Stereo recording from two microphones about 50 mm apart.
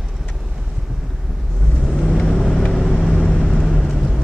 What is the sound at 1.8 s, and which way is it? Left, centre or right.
Vehicle, centre.